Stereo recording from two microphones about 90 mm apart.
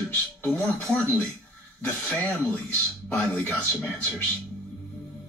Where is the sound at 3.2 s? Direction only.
15° left (ahead or behind).